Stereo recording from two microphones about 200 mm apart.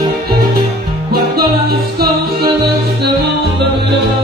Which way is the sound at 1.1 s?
50° right (ahead or behind).